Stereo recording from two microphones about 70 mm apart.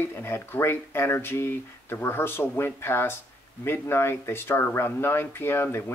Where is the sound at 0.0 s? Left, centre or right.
Left.